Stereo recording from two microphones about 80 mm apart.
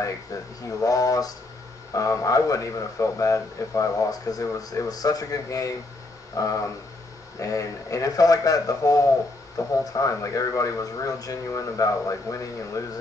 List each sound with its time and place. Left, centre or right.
0.0 s a man's voice: left